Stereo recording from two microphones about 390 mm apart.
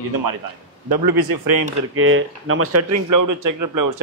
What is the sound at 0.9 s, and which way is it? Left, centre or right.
Speech, right.